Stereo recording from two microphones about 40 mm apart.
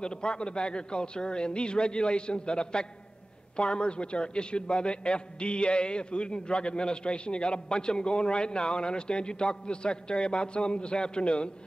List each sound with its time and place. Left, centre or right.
0.0 s a man's voice: left